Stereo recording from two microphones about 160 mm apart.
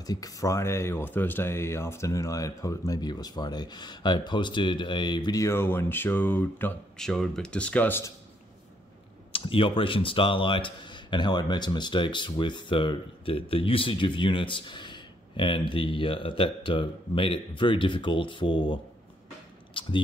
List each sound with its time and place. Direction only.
0.0 s speech: 25° left (ahead or behind)
9.3 s speech: 35° left (ahead or behind)
19.7 s a sound: 30° left (ahead or behind)